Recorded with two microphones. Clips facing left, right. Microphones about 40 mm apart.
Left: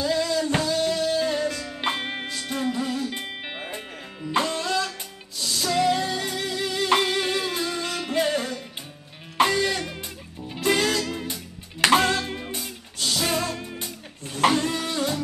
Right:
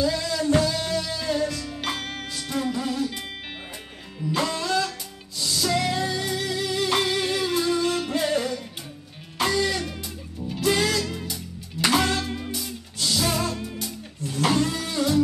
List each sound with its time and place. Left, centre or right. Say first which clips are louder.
0.0 s music: left 1 dB; left
4.2 s music: left 1 dB; left
9.4 s music: left 2 dB; left